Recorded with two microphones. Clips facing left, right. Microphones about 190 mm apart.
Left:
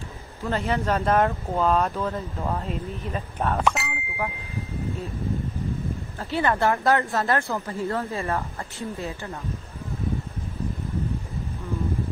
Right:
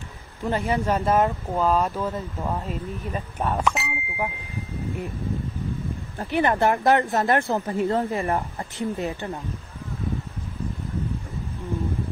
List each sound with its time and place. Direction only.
0.5 s speech: 10° right (ahead or behind)
3.6 s a sound: centre (ahead or behind)
6.1 s speech: 15° right (ahead or behind)